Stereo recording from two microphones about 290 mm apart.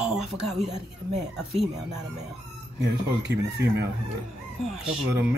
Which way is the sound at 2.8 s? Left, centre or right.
Right.